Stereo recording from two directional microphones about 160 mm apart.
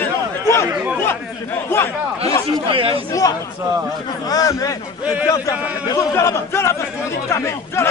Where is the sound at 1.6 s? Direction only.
15° left (ahead or behind).